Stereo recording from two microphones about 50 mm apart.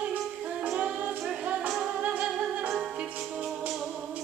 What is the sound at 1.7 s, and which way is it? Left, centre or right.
Music, centre.